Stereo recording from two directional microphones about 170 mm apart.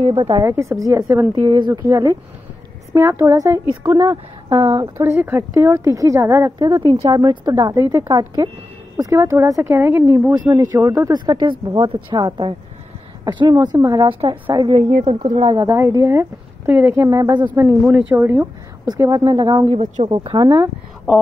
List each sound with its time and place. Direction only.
0.1 s speech: 25° right (ahead or behind)
1.0 s a woman's voice: 5° right (ahead or behind)
1.3 s a woman's voice: 25° right (ahead or behind)
15.2 s speech: 35° right (ahead or behind)
15.5 s a woman's voice: 15° right (ahead or behind)
17.6 s a woman's voice: 10° right (ahead or behind)
19.7 s speech: 35° right (ahead or behind)